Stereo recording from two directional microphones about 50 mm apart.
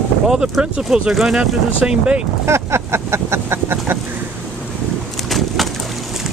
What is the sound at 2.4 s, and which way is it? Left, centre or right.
Vehicle, right.